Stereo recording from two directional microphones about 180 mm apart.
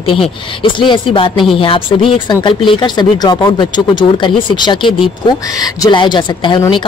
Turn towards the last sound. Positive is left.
turn(degrees=25)  # may be behind; listen again after turning